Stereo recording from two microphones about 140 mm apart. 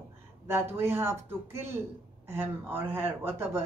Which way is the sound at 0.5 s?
15° right (ahead or behind).